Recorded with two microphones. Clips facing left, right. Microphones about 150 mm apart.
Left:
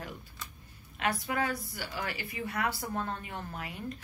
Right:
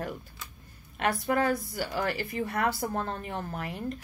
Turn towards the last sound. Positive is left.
turn(degrees=-45)  # may be behind; listen again after turning